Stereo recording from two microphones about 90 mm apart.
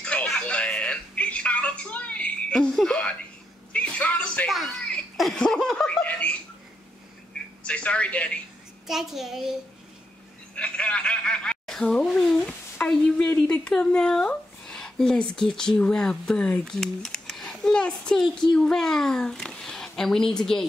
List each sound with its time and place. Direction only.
0.0 s a sound: 10° left (ahead or behind)
2.7 s speech: 5° left (ahead or behind)
3.7 s a sound: 15° left (ahead or behind)
5.1 s laughter: 5° left (ahead or behind)
7.6 s speech: 15° left (ahead or behind)
8.8 s a child's voice: 5° right (ahead or behind)
10.5 s snicker: 15° left (ahead or behind)
12.7 s a child's voice: 15° left (ahead or behind)